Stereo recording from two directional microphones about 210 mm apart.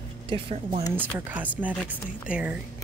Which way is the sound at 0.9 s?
10° right (ahead or behind).